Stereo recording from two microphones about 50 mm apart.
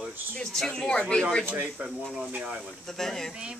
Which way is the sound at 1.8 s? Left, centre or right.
Right.